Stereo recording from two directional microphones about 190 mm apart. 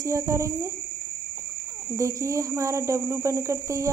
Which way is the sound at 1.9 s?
15° right (ahead or behind).